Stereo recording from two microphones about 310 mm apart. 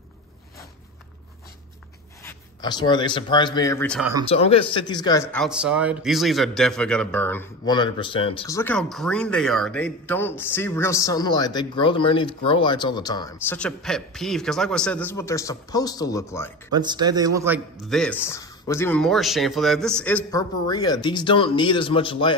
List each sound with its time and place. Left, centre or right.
2.2 s speech: centre
4.3 s a man's voice: centre
16.7 s a man's voice: centre